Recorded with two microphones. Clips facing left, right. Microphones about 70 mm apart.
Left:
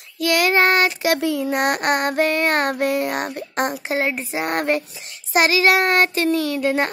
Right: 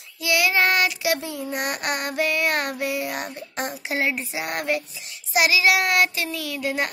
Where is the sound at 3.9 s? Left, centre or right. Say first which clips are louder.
Left 3 dB; left.